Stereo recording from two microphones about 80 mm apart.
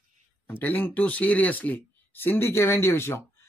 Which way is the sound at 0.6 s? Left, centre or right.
Left.